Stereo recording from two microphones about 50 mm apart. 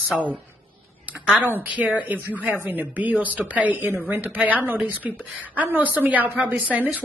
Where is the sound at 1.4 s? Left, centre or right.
Right.